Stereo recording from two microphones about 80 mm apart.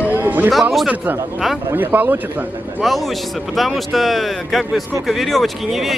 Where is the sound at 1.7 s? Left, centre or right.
Right.